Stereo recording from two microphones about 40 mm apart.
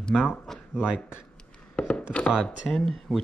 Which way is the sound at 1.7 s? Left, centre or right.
Left.